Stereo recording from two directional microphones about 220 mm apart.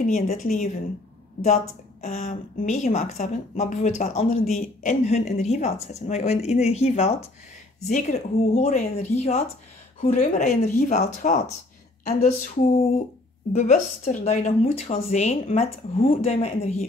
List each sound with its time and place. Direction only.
0.0 s a woman's voice: 35° left (ahead or behind)